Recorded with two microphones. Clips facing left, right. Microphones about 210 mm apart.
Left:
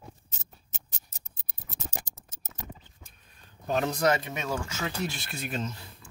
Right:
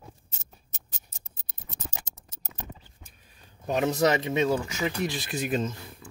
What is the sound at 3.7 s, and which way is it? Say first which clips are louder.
Speech: right 2 dB; 20° right (ahead or behind).